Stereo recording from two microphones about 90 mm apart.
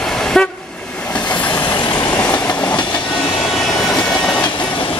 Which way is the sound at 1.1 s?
15° left (ahead or behind).